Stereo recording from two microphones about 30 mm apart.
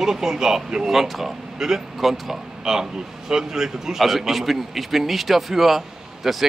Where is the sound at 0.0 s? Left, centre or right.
Centre.